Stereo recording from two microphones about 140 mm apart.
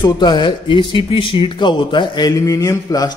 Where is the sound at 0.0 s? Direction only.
30° left (ahead or behind).